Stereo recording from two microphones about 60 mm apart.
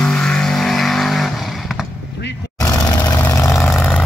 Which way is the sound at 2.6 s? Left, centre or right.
Left.